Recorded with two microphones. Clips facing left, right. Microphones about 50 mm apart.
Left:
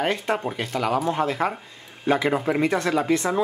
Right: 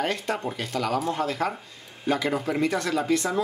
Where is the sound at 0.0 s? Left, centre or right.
Left.